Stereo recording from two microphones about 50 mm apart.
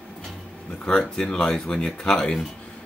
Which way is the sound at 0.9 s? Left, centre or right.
Centre.